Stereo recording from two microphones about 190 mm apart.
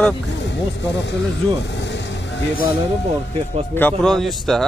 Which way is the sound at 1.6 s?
65° left (ahead or behind).